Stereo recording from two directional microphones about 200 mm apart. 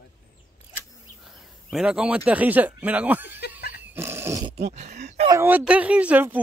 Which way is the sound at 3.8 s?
10° right (ahead or behind).